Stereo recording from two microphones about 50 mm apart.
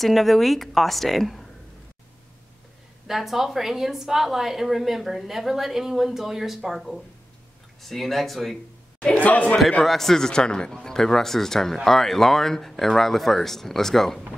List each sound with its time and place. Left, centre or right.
0.0 s a woman's voice: centre
3.1 s a woman's voice: centre
9.2 s speech: left
9.6 s a man's voice: centre